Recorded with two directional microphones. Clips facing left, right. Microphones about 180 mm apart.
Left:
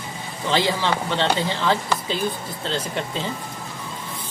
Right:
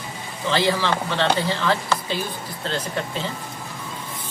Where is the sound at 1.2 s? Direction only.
20° left (ahead or behind).